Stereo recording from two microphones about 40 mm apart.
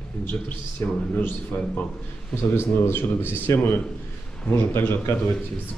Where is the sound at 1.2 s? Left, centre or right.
Left.